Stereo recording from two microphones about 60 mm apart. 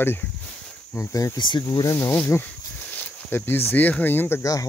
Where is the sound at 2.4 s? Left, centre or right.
Left.